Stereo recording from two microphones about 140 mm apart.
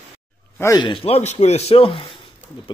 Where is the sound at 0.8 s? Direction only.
35° left (ahead or behind).